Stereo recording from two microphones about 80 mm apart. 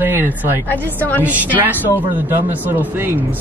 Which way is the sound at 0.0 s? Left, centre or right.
Right.